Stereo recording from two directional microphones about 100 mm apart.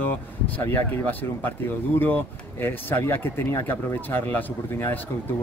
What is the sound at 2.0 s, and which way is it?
Speech, 20° left (ahead or behind).